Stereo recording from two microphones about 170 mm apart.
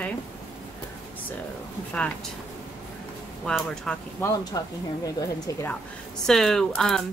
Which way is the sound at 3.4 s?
5° left (ahead or behind).